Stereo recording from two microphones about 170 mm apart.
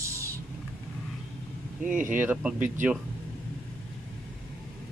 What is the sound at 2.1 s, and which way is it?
Speech, 10° right (ahead or behind).